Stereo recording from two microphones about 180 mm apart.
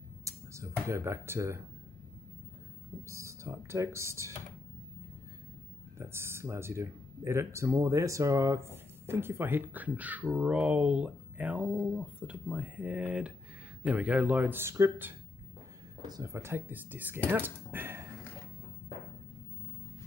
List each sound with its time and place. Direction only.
0.2 s speech: 15° right (ahead or behind)
3.1 s speech: 15° right (ahead or behind)
5.9 s speech: 15° right (ahead or behind)